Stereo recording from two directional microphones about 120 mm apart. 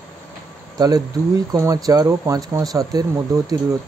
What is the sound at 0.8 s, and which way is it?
Speech, 30° right (ahead or behind).